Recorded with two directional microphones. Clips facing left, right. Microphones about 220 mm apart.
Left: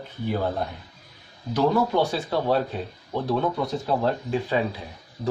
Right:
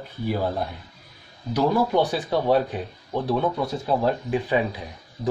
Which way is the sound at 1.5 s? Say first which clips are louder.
Right 1 dB; 15° right (ahead or behind).